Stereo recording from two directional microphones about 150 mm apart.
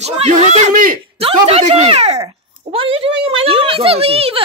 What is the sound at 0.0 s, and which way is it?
Speech, 45° right (ahead or behind).